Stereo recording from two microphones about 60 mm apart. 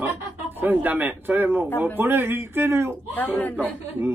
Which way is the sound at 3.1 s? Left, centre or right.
Left.